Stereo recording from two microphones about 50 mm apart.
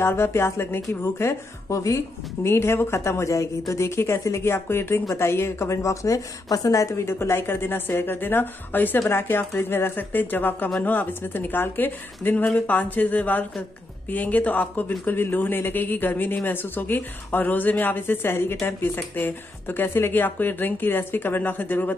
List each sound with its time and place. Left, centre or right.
0.0 s a woman's voice: left
1.0 s a woman's voice: left
4.4 s a woman's voice: left
18.9 s speech: left